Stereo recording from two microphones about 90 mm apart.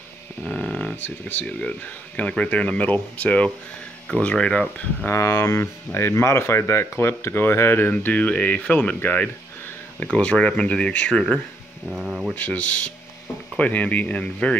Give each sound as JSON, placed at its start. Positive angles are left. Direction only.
{"t": 0.4, "sound": "speech", "side_deg": 10}
{"t": 5.0, "sound": "speech", "side_deg": 30}
{"t": 11.9, "sound": "speech", "side_deg": -10}
{"t": 12.4, "sound": "speech", "side_deg": 15}